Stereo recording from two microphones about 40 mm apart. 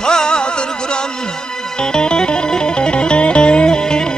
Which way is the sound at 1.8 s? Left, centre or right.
Left.